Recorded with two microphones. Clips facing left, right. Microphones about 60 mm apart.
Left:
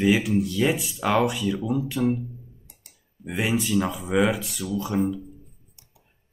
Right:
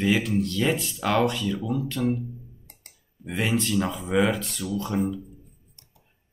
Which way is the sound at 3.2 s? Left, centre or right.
Centre.